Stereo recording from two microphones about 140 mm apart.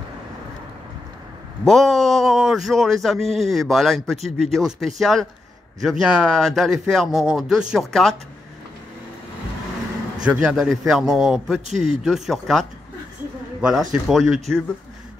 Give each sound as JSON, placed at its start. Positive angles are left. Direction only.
{"t": 1.6, "sound": "a man's voice", "side_deg": 0}
{"t": 10.2, "sound": "a man's voice", "side_deg": -5}
{"t": 11.7, "sound": "a man's voice", "side_deg": -55}
{"t": 12.0, "sound": "a man's voice", "side_deg": 0}